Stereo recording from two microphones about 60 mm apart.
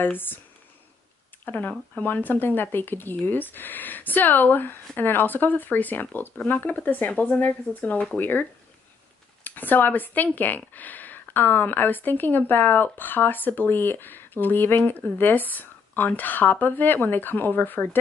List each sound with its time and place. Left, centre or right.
0.0 s speech: left
1.4 s speech: left